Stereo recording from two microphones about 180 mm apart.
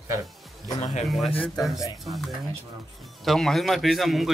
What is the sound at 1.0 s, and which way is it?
Speech, centre (ahead or behind).